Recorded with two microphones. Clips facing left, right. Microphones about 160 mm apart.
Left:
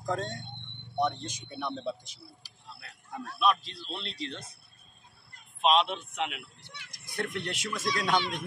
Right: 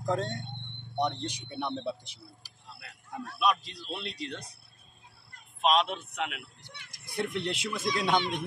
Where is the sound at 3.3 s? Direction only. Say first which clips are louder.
Left 1 dB; 10° right (ahead or behind).